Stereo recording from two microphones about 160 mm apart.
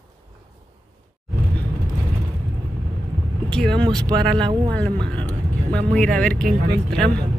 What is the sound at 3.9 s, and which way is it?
Speech, 25° right (ahead or behind).